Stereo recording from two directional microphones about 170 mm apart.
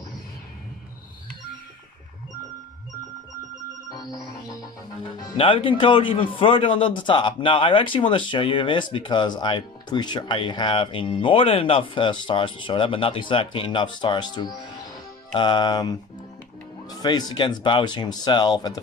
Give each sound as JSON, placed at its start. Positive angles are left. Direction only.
{"t": 3.9, "sound": "music", "side_deg": 25}
{"t": 5.4, "sound": "a man's voice", "side_deg": 30}
{"t": 17.0, "sound": "a man's voice", "side_deg": 25}